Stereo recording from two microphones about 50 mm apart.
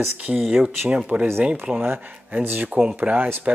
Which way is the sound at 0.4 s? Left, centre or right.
Centre.